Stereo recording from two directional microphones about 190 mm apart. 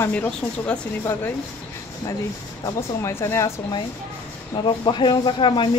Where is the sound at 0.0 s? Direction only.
10° left (ahead or behind).